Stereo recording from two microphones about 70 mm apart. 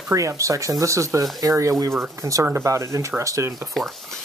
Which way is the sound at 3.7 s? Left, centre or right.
Centre.